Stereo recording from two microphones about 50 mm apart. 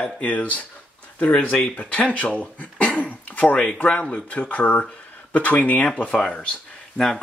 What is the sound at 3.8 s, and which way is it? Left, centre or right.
Speech, left.